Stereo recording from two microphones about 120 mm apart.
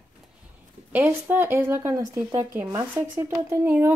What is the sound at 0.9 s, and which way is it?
Speech, 15° right (ahead or behind).